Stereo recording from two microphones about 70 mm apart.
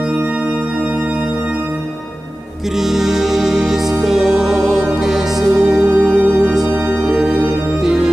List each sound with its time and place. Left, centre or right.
2.8 s music: centre